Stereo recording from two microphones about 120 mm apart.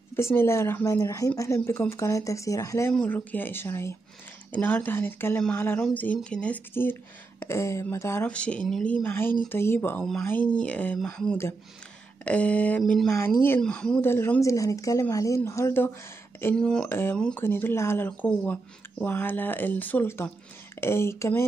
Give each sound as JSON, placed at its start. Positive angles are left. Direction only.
{"t": 0.1, "sound": "speech", "side_deg": 20}
{"t": 3.1, "sound": "speech", "side_deg": 15}
{"t": 8.3, "sound": "speech", "side_deg": 10}
{"t": 9.0, "sound": "speech", "side_deg": 20}
{"t": 12.3, "sound": "speech", "side_deg": 10}
{"t": 14.0, "sound": "speech", "side_deg": 20}
{"t": 16.5, "sound": "speech", "side_deg": 5}
{"t": 16.9, "sound": "speech", "side_deg": 20}